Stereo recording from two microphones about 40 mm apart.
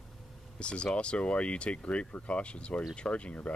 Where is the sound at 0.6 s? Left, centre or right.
Left.